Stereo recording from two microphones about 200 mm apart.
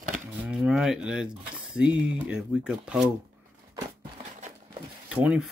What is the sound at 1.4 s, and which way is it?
Speech, 5° right (ahead or behind).